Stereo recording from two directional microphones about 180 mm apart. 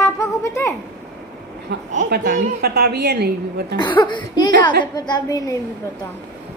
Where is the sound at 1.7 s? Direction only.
60° right (ahead or behind).